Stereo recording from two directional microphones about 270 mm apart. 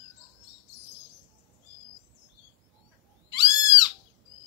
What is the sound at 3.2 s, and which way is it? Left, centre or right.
Cat, centre.